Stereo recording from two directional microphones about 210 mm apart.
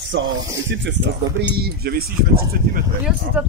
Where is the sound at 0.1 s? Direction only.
55° right (ahead or behind).